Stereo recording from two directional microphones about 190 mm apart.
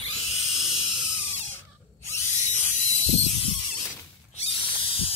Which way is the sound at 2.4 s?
40° left (ahead or behind).